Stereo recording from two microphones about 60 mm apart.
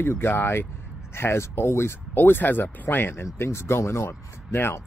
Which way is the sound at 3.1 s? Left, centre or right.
Left.